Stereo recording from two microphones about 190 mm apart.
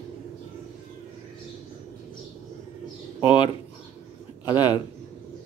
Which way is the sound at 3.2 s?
25° left (ahead or behind).